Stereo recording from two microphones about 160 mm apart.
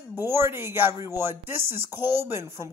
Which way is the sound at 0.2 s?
15° right (ahead or behind).